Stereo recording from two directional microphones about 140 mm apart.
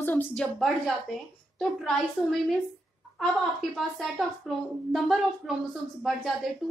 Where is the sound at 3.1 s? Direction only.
Centre (ahead or behind).